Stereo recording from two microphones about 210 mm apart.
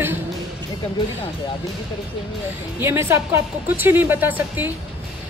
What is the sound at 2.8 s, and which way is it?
Speech, 10° right (ahead or behind).